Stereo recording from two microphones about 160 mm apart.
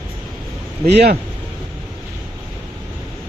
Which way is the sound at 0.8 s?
80° right.